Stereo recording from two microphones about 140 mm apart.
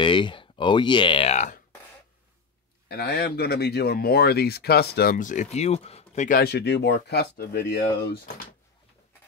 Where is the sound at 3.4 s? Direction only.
90° left; by 6.2 s 50° left (ahead or behind).